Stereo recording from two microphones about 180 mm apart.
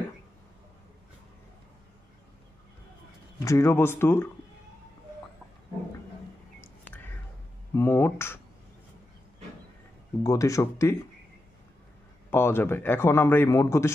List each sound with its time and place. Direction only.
3.3 s a man's voice: 15° left (ahead or behind)
6.6 s whispering: 10° left (ahead or behind)
7.7 s a sound: 15° left (ahead or behind)
10.2 s a man's voice: 20° left (ahead or behind)
12.3 s a man's voice: 15° left (ahead or behind)